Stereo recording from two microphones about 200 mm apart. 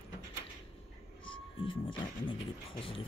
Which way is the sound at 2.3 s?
25° left (ahead or behind).